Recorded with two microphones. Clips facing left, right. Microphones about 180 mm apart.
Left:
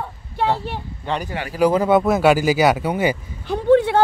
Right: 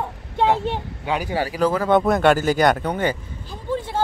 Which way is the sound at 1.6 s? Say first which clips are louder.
Left 5 dB; 20° left (ahead or behind).